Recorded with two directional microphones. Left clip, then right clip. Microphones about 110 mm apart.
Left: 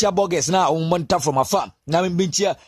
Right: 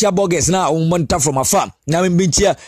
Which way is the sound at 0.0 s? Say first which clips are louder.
Right 4 dB; 30° right (ahead or behind).